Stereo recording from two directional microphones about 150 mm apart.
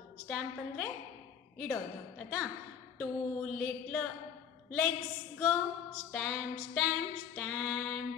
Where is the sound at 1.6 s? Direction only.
5° left (ahead or behind).